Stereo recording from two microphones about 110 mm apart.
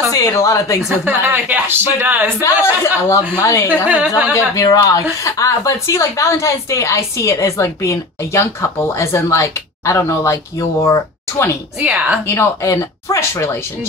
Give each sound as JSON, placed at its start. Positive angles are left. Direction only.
{"t": 0.1, "sound": "a woman's voice", "side_deg": 30}
{"t": 1.0, "sound": "speech", "side_deg": -20}
{"t": 2.6, "sound": "a woman's voice", "side_deg": 25}
{"t": 3.8, "sound": "speech", "side_deg": -15}
{"t": 4.6, "sound": "a woman's voice", "side_deg": 35}
{"t": 11.8, "sound": "speech", "side_deg": -10}
{"t": 12.4, "sound": "a woman's voice", "side_deg": 25}